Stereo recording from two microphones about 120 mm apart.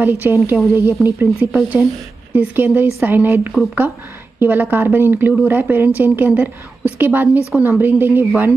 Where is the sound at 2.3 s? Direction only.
15° right (ahead or behind).